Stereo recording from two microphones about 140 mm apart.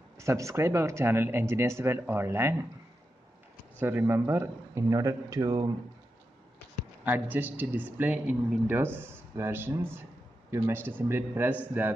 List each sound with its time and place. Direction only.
0.2 s a man's voice: 20° right (ahead or behind)
3.8 s a man's voice: 15° right (ahead or behind)
7.1 s speech: 15° right (ahead or behind)